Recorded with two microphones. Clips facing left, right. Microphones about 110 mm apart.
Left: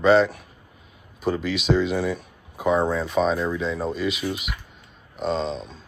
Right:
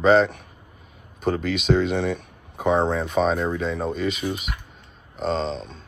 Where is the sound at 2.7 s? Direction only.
25° right (ahead or behind).